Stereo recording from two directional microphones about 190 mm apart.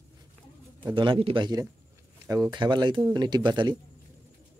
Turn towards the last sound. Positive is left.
turn(degrees=-25)  # may be behind; listen again after turning